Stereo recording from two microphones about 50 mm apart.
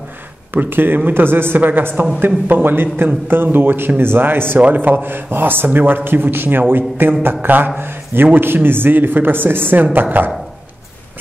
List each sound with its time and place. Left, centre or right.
0.5 s speech: right
4.6 s a man's voice: right